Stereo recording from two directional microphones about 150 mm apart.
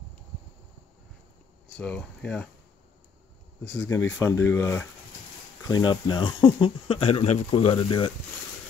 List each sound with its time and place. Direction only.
1.8 s speech: 10° left (ahead or behind)
3.6 s speech: 5° left (ahead or behind)
3.9 s speech: 20° left (ahead or behind)
5.7 s speech: 30° left (ahead or behind)